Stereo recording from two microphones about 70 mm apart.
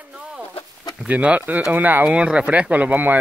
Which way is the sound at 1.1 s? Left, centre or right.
Right.